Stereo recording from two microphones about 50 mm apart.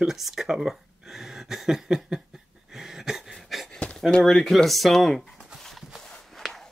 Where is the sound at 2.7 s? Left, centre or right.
Centre.